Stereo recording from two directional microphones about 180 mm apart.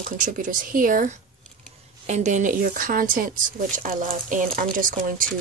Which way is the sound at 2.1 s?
40° right (ahead or behind).